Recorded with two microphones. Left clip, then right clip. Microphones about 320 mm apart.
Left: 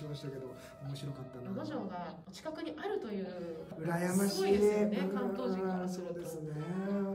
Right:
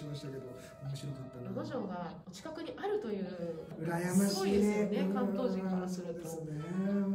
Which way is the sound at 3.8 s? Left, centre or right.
Centre.